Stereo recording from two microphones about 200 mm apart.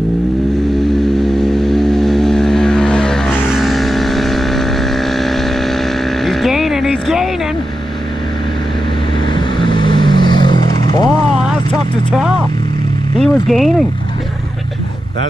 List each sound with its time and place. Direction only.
1.0 s vehicle: centre (ahead or behind)
6.2 s music: centre (ahead or behind)
9.3 s vehicle: 25° left (ahead or behind)
13.2 s a sound: centre (ahead or behind)